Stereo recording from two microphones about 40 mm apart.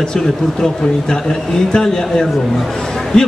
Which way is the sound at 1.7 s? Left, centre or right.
Centre.